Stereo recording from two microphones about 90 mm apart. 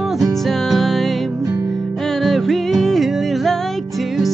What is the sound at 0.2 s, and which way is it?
Music, centre (ahead or behind).